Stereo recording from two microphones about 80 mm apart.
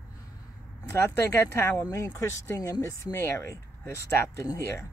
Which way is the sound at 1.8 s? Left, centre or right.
Left.